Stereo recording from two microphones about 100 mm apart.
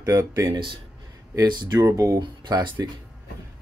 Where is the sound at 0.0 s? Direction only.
35° right (ahead or behind).